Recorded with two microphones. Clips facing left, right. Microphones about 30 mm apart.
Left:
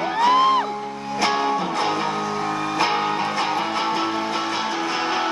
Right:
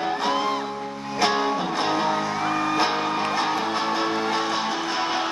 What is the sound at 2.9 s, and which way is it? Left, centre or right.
Music, left.